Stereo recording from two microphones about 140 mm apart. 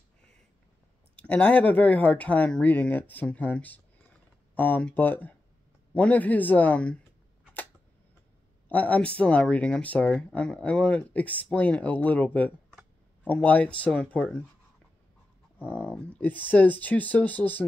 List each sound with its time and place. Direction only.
1.1 s speech: 10° left (ahead or behind)
8.6 s speech: 10° left (ahead or behind)
15.6 s speech: 15° left (ahead or behind)